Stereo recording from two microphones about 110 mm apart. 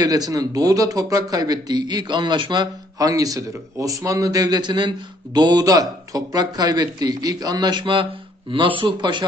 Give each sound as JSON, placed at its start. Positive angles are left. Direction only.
{"t": 0.0, "sound": "a man's voice", "side_deg": -35}